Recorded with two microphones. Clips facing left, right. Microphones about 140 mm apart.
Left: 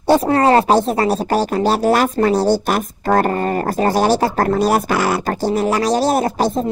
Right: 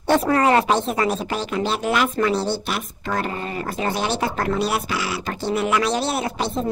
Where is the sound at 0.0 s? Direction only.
30° left (ahead or behind).